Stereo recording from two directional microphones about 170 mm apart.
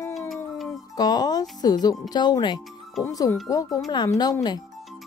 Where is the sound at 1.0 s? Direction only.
25° left (ahead or behind).